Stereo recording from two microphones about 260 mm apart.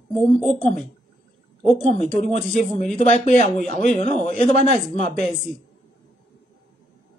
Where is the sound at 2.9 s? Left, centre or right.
Left.